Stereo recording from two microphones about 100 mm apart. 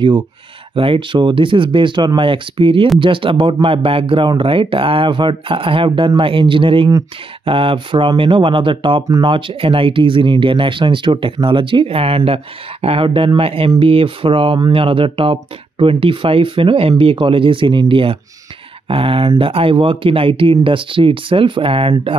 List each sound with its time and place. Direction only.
0.7 s speech: 60° right (ahead or behind)